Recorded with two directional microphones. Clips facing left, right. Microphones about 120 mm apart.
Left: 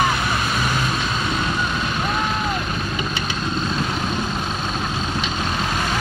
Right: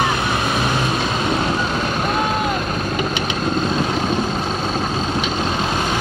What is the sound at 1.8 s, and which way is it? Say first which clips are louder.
Vehicle: right 3 dB; 45° right (ahead or behind).